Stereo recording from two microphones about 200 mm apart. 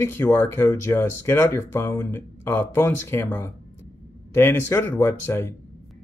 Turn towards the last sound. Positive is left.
turn(degrees=15)  # may be behind; listen again after turning